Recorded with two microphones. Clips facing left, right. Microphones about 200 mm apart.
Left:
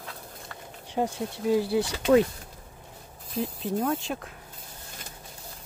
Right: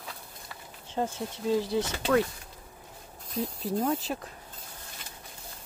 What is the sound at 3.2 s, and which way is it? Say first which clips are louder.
Speech: left 2 dB; centre (ahead or behind).